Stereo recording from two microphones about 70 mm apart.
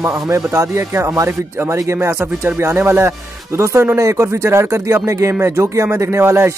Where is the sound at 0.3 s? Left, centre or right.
Right.